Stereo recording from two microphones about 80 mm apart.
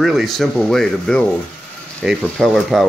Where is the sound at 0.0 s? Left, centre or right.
Centre.